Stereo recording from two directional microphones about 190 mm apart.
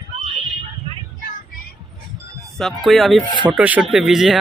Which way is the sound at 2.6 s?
Centre (ahead or behind).